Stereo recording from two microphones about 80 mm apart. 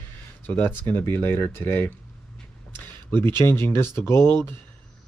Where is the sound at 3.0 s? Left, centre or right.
Left.